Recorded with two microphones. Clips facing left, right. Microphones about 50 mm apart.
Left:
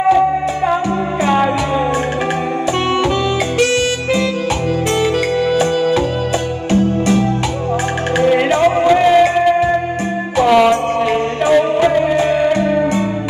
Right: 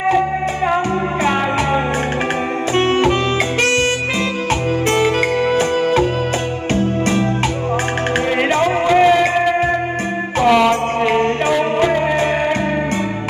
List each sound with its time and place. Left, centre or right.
3.0 s music: right
10.3 s music: right